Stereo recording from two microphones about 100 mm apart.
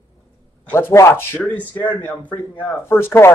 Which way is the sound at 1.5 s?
15° left (ahead or behind).